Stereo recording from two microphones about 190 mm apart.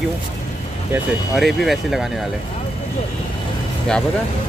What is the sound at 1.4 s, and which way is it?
Speech, centre (ahead or behind).